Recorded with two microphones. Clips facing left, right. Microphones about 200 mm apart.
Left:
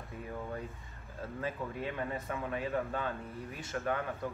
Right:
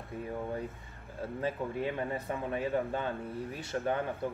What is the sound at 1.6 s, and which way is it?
Speech, 25° right (ahead or behind).